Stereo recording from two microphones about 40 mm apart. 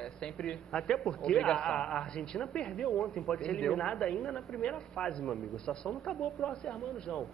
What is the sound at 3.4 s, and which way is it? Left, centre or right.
A man's voice, centre.